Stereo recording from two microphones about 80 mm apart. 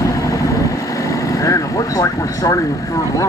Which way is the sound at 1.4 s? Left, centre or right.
Left.